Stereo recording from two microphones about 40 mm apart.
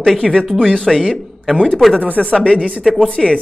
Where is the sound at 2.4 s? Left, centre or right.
Left.